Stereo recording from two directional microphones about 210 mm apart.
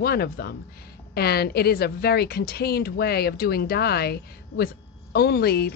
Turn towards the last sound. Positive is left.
turn(degrees=50)  # may be behind; listen again after turning